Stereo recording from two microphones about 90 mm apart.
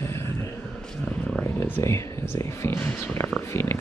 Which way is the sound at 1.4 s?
20° left (ahead or behind).